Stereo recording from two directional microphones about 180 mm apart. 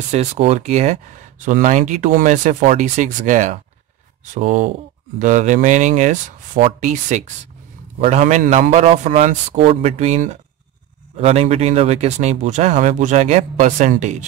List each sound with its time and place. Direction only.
0.1 s speech: 35° right (ahead or behind)